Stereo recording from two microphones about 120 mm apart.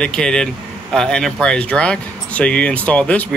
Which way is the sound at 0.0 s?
5° left (ahead or behind).